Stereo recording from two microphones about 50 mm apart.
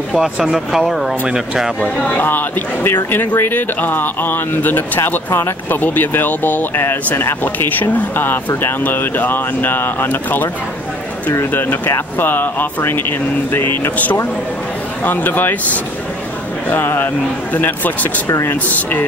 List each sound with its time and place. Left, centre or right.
0.2 s speech: centre
2.0 s speech: left
6.7 s speech: left
7.4 s speech: left
12.2 s speech: left
15.0 s speech: left